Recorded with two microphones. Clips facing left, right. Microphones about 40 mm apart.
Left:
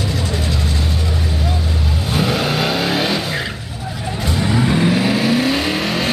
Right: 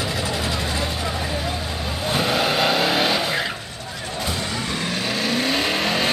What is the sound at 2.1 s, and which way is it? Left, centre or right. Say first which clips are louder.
Vehicle: left 2 dB; centre.